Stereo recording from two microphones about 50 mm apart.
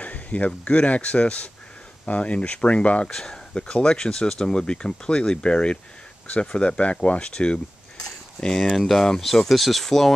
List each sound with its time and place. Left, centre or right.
0.0 s speech: left
3.1 s speech: centre
8.5 s speech: centre